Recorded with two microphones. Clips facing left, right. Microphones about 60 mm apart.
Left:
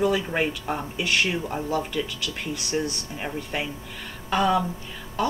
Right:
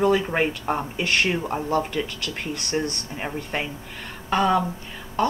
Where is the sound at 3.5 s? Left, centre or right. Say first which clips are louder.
Right 1 dB; right.